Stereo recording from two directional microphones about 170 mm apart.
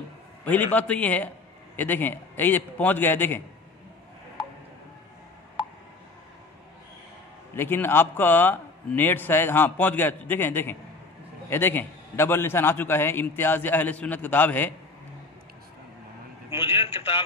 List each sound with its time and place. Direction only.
0.7 s a man's voice: 10° left (ahead or behind)
7.5 s a man's voice: 15° left (ahead or behind)
16.5 s a man's voice: 30° left (ahead or behind)